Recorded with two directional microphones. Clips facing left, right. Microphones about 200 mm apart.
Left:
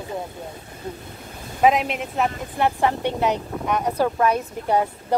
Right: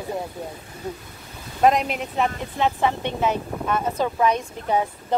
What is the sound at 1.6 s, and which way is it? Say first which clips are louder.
Speech: even; centre (ahead or behind).